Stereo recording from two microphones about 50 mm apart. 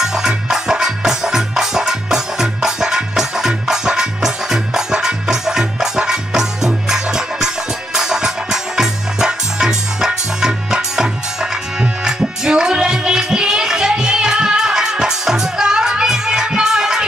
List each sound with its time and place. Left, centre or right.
0.0 s music: centre